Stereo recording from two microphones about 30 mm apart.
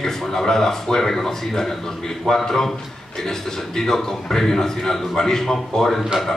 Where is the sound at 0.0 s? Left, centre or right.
Centre.